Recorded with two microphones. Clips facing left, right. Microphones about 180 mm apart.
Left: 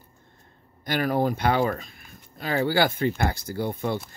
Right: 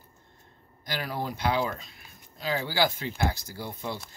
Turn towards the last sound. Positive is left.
turn(degrees=55)  # may be behind; listen again after turning